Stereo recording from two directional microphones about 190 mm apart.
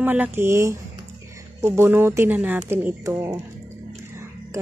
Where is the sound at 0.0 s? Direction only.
10° right (ahead or behind).